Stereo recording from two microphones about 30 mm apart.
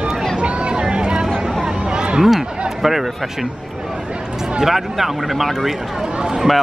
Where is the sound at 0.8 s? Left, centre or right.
Right.